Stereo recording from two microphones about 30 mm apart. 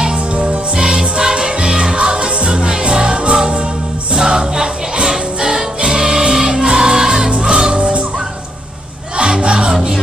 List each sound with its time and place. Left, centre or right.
0.3 s music: right
0.7 s music: right
9.4 s music: right